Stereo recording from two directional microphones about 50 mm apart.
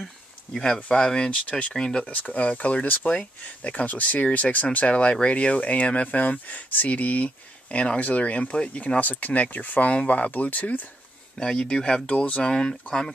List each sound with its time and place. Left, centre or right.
0.5 s speech: centre
2.2 s speech: left
11.3 s speech: centre